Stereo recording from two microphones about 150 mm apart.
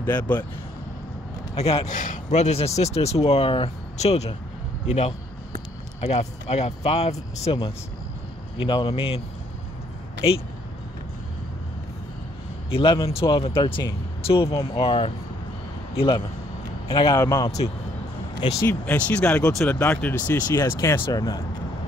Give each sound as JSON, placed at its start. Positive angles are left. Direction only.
{"t": 0.2, "sound": "speech", "side_deg": 10}
{"t": 1.5, "sound": "a man's voice", "side_deg": 40}
{"t": 2.0, "sound": "speech", "side_deg": 55}
{"t": 8.6, "sound": "speech", "side_deg": 35}
{"t": 12.6, "sound": "a man's voice", "side_deg": 35}
{"t": 18.6, "sound": "speech", "side_deg": 10}